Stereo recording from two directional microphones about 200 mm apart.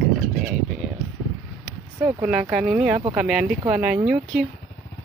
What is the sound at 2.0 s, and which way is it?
Speech, 5° right (ahead or behind).